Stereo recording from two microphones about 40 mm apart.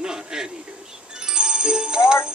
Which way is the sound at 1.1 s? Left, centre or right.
Centre.